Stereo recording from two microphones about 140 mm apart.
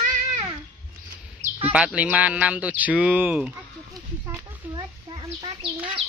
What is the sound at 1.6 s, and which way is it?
Speech, 10° right (ahead or behind).